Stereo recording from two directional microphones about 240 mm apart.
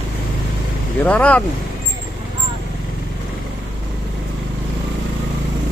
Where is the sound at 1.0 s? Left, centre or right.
Centre.